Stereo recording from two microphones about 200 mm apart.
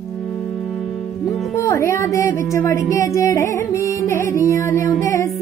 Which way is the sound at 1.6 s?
15° left (ahead or behind).